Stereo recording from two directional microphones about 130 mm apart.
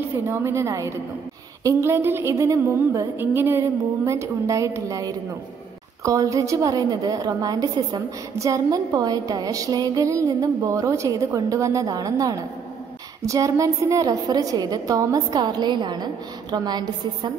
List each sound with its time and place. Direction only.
0.3 s a woman's voice: 20° right (ahead or behind)